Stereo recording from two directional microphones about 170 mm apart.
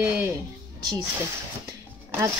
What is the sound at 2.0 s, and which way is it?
Music, 15° right (ahead or behind).